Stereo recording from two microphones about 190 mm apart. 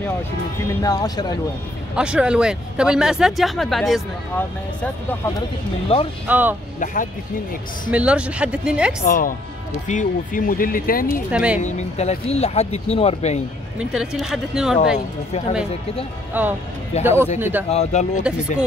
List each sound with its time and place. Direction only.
0.8 s speech: 20° left (ahead or behind)
2.0 s speech: 5° right (ahead or behind)
5.9 s speech: 30° left (ahead or behind)
6.2 s a woman's voice: 10° right (ahead or behind)
6.8 s speech: 45° left (ahead or behind)
7.9 s speech: 5° right (ahead or behind)
9.0 s speech: 50° left (ahead or behind)
11.2 s a woman's voice: 5° right (ahead or behind)
11.6 s speech: 35° left (ahead or behind)
13.7 s speech: 5° right (ahead or behind)
16.3 s a woman's voice: 10° right (ahead or behind)
17.6 s speech: 35° left (ahead or behind)